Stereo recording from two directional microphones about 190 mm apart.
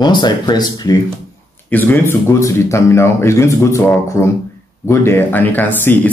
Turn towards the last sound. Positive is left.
turn(degrees=10)  # may be behind; listen again after turning